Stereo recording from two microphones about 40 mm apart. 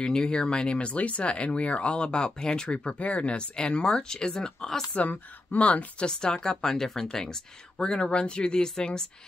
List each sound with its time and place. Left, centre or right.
0.0 s speech: centre
3.0 s speech: left; by 4.8 s centre
4.9 s speech: left
6.0 s speech: left
6.6 s speech: centre